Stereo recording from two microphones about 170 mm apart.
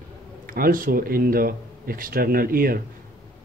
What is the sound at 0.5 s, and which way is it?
Speech, 55° right (ahead or behind).